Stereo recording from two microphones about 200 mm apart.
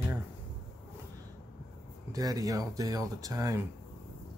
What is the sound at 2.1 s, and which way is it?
Speech, 20° right (ahead or behind).